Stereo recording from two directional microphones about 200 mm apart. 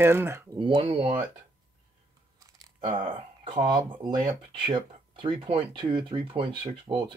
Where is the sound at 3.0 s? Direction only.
25° right (ahead or behind).